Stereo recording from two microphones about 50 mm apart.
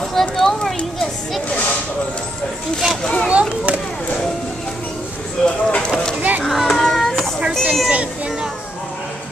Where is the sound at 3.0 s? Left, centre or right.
Centre.